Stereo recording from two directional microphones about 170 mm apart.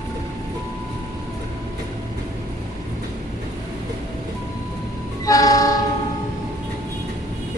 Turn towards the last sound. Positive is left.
turn(degrees=20)  # may be behind; listen again after turning